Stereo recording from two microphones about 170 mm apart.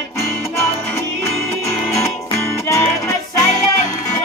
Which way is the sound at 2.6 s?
20° left (ahead or behind).